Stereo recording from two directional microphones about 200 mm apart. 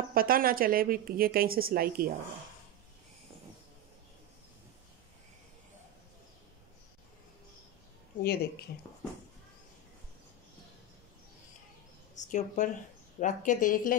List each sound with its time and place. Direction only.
0.1 s speech: 45° right (ahead or behind)
8.2 s speech: 50° left (ahead or behind)
12.2 s a woman's voice: 40° left (ahead or behind)